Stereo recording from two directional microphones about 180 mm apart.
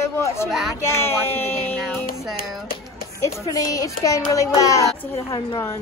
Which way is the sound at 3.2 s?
20° left (ahead or behind).